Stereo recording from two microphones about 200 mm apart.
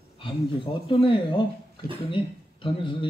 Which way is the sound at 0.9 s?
25° left (ahead or behind).